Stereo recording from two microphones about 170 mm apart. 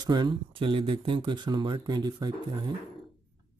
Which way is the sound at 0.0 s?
25° right (ahead or behind).